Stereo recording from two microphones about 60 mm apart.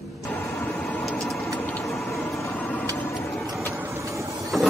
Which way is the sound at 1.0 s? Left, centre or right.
Centre.